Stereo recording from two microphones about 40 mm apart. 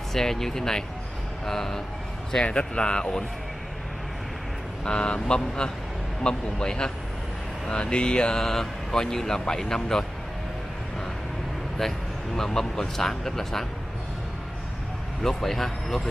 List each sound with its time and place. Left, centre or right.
0.1 s speech: centre
2.4 s speech: left
4.8 s speech: left
8.4 s speech: centre
11.8 s speech: centre
15.2 s a man's voice: centre